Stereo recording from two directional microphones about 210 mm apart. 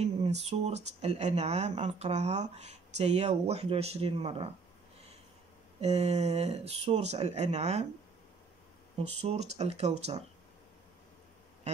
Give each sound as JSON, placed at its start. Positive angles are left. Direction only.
{"t": 0.0, "sound": "speech", "side_deg": -30}
{"t": 5.8, "sound": "speech", "side_deg": -30}
{"t": 9.2, "sound": "speech", "side_deg": -30}